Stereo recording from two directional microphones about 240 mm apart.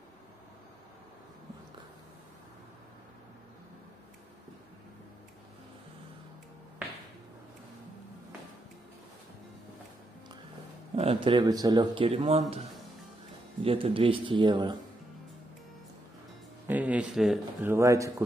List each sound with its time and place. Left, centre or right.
11.0 s a man's voice: right
13.7 s a man's voice: right
16.6 s a man's voice: centre
17.7 s speech: centre